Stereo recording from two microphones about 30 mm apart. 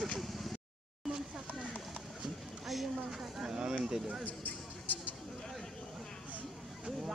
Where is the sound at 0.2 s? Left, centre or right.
Centre.